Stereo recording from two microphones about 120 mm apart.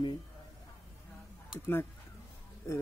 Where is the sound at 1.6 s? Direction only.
20° left (ahead or behind).